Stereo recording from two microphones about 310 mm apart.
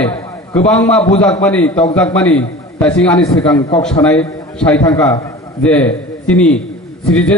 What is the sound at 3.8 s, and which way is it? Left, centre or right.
A man's voice, centre.